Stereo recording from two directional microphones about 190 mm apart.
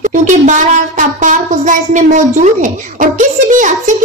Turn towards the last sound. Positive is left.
turn(degrees=-40)  # may be behind; listen again after turning